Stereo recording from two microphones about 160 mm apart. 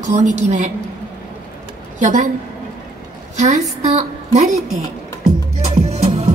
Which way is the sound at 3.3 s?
45° right (ahead or behind).